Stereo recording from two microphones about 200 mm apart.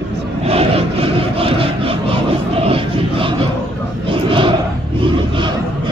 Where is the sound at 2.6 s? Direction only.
25° right (ahead or behind).